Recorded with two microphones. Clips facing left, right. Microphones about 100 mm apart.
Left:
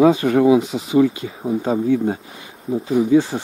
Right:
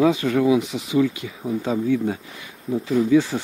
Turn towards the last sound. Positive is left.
turn(degrees=20)  # may be behind; listen again after turning